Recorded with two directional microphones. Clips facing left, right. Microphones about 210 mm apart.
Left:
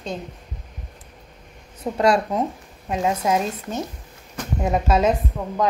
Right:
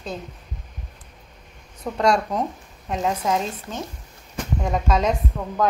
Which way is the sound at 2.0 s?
5° left (ahead or behind).